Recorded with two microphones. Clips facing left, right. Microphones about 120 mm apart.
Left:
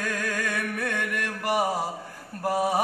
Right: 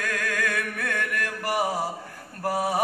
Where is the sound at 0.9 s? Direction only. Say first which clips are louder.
Right 1 dB; 20° left (ahead or behind).